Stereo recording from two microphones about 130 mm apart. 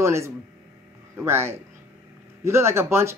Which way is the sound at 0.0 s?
20° right (ahead or behind).